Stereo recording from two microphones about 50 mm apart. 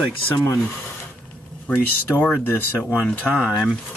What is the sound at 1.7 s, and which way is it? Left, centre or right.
Speech, left.